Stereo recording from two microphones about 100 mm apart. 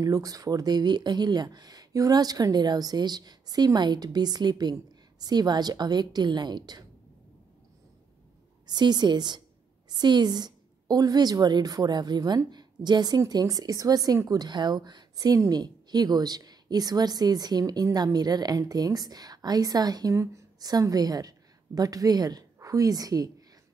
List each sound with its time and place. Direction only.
0.0 s speech: 35° right (ahead or behind)
8.6 s a woman's voice: 45° right (ahead or behind)